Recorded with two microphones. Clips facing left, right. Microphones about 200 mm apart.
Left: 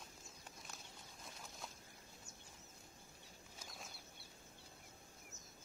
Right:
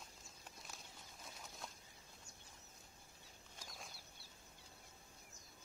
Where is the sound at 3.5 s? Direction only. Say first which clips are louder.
Even; centre (ahead or behind).